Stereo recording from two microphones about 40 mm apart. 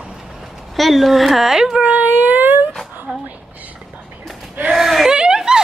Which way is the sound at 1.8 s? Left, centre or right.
Right.